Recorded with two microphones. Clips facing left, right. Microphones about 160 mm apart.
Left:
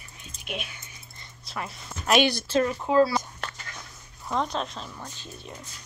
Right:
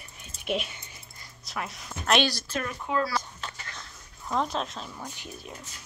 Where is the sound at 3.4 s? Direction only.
65° left (ahead or behind).